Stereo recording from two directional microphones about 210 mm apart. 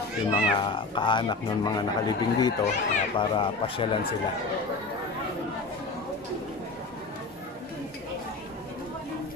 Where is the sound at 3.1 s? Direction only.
25° left (ahead or behind).